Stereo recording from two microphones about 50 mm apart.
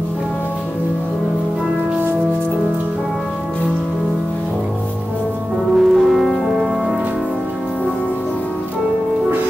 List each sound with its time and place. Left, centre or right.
5.8 s music: centre